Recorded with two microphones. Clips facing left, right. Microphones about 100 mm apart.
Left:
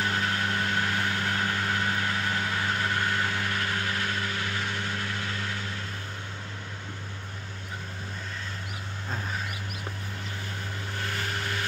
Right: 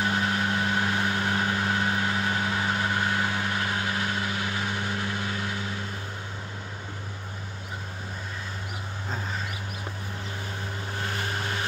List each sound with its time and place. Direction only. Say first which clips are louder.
0.0 s vehicle: right 2 dB; 20° right (ahead or behind)